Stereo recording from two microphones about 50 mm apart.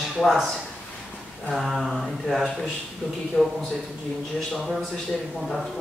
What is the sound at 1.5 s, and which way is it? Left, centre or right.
Mantra, centre.